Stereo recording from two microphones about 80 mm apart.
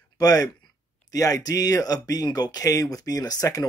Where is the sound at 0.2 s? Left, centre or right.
Left.